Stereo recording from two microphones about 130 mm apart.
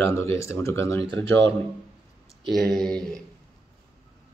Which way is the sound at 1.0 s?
45° right (ahead or behind).